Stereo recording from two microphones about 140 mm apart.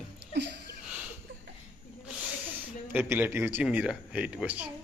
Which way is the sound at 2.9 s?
15° right (ahead or behind).